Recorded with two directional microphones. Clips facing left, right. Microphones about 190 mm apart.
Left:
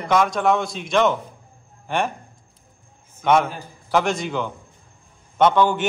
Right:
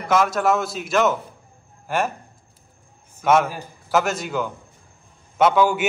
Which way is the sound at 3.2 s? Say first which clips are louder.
Even; 5° right (ahead or behind).